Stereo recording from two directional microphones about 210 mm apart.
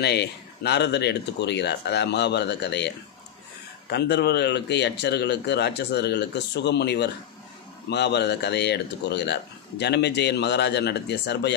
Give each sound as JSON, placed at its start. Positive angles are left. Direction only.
{"t": 0.0, "sound": "speech", "side_deg": 50}